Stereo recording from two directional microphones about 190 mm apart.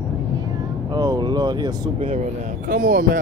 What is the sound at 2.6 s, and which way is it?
Speech, 50° right (ahead or behind).